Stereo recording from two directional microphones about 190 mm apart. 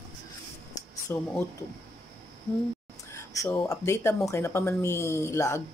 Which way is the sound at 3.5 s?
15° left (ahead or behind).